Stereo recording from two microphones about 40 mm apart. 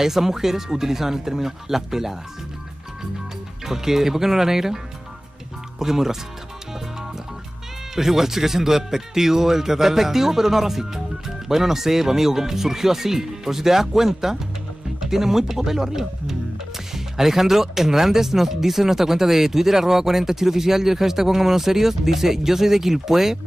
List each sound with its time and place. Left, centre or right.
0.0 s speech: centre
3.6 s speech: centre
5.8 s speech: centre
7.9 s speech: centre